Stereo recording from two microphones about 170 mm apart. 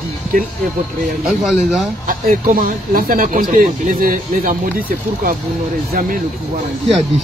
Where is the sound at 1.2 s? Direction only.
Centre (ahead or behind).